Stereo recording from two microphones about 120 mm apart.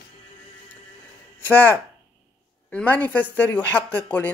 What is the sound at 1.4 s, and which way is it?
Speech, 15° left (ahead or behind).